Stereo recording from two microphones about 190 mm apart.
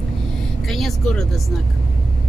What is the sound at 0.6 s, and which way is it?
Speech, centre (ahead or behind).